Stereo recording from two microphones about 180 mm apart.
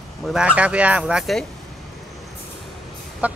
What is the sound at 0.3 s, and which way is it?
Speech, 5° right (ahead or behind).